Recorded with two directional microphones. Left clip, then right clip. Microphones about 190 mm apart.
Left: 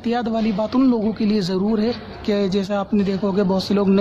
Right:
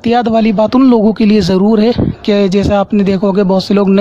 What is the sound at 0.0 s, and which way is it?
A man's voice, 45° right (ahead or behind).